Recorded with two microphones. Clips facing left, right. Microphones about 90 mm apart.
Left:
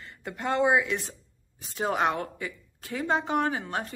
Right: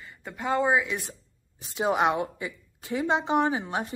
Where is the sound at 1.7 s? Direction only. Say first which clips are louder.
Right 2 dB; 15° right (ahead or behind).